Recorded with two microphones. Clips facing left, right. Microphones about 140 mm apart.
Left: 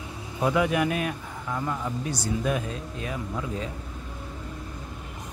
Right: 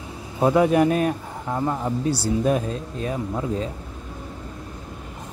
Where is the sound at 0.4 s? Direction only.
35° right (ahead or behind).